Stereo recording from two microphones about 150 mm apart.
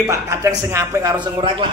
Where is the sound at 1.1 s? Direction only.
35° right (ahead or behind).